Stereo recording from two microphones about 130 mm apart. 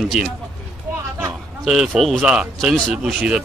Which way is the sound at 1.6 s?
Centre (ahead or behind).